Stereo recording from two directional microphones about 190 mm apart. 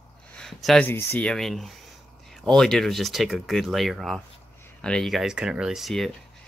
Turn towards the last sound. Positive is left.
turn(degrees=0)  # may be behind; listen again after turning